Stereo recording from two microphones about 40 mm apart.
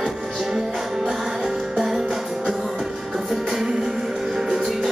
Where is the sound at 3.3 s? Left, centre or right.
Centre.